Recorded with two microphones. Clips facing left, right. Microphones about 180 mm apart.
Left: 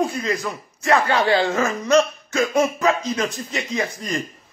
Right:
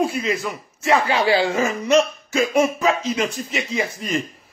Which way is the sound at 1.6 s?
25° right (ahead or behind).